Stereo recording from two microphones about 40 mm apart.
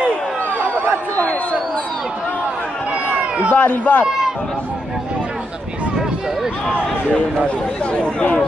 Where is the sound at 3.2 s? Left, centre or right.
Right.